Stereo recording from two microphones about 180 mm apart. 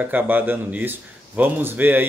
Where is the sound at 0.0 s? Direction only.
10° right (ahead or behind).